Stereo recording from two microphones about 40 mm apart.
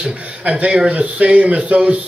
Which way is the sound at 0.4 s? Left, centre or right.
Right.